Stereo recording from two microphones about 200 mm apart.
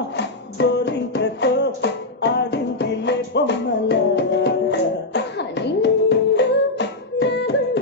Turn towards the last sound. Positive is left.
turn(degrees=60)  # may be behind; listen again after turning